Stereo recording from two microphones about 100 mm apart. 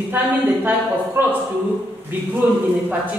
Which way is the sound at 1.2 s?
25° right (ahead or behind).